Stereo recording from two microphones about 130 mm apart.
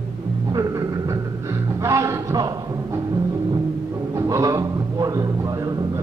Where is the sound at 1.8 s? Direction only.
25° right (ahead or behind).